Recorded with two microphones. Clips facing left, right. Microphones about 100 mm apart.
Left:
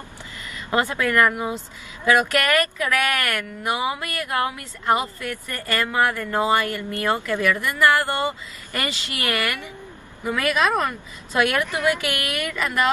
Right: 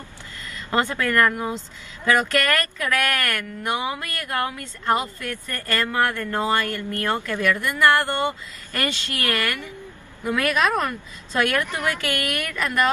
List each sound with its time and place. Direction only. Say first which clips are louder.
0.7 s speech: left 1 dB; 10° left (ahead or behind)